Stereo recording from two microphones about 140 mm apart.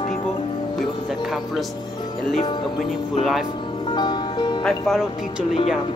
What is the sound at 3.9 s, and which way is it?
Music, 30° left (ahead or behind).